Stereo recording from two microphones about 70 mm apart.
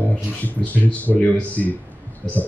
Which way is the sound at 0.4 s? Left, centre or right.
Left.